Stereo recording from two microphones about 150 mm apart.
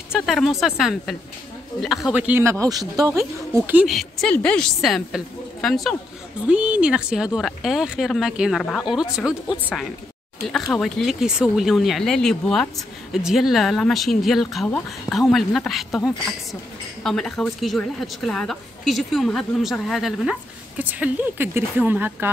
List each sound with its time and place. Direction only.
0.1 s a woman's voice: centre (ahead or behind)
2.6 s speech: 25° right (ahead or behind)
3.6 s speech: 10° right (ahead or behind)
3.9 s a woman's voice: 5° left (ahead or behind)
6.4 s a woman's voice: 10° right (ahead or behind)
17.0 s a woman's voice: 5° left (ahead or behind); by 22.3 s 15° right (ahead or behind)